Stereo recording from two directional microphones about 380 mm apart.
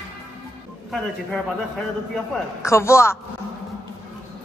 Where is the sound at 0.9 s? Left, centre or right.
Centre.